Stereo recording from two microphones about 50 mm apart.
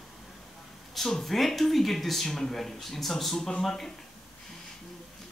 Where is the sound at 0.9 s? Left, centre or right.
Centre.